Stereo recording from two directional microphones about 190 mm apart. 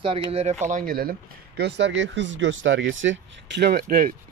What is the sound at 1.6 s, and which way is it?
Speech, 65° right (ahead or behind).